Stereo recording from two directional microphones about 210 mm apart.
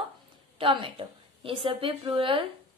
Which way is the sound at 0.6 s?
25° right (ahead or behind).